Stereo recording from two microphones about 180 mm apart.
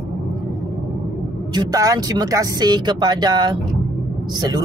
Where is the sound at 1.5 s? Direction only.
20° right (ahead or behind).